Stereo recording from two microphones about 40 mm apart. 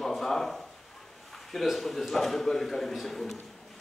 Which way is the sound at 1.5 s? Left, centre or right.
Centre.